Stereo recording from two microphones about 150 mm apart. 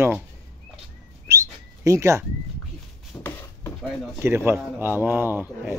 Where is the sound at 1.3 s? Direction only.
20° right (ahead or behind).